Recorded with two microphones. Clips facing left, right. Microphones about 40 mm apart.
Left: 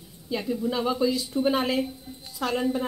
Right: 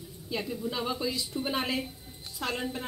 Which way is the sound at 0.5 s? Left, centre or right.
Centre.